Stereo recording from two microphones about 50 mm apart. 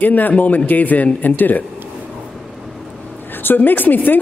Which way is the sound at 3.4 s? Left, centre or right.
Left.